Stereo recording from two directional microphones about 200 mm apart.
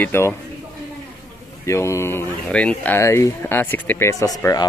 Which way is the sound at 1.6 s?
15° left (ahead or behind).